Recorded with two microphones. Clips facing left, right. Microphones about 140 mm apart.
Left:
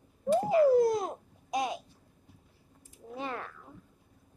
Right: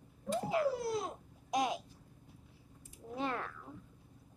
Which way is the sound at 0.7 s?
45° left (ahead or behind).